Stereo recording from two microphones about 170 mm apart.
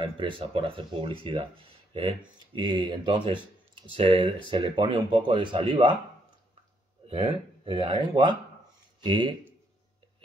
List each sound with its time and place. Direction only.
0.0 s speech: 30° right (ahead or behind)
7.1 s speech: 25° right (ahead or behind)